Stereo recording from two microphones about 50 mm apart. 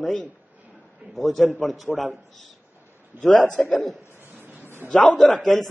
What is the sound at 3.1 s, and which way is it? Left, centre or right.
Speech, right.